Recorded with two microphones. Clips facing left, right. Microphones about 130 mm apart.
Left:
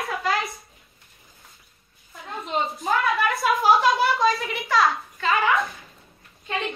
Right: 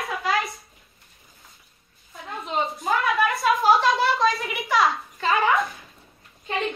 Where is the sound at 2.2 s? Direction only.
Centre (ahead or behind).